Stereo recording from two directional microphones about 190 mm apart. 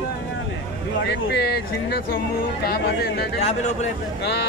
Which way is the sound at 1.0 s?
65° left (ahead or behind).